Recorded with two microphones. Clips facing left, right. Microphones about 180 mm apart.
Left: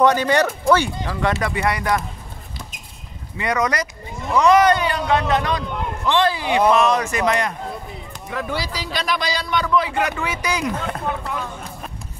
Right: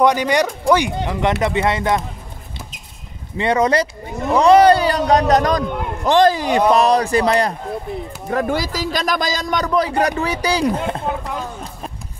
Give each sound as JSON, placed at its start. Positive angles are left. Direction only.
{"t": 0.0, "sound": "speech", "side_deg": -15}
{"t": 3.3, "sound": "a man's voice", "side_deg": -30}
{"t": 8.3, "sound": "a man's voice", "side_deg": -45}
{"t": 11.2, "sound": "a sound", "side_deg": -35}